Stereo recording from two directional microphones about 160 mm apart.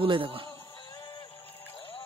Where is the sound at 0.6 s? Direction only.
30° left (ahead or behind).